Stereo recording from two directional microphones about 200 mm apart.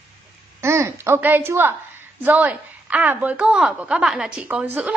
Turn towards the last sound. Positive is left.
turn(degrees=-5)  # may be behind; listen again after turning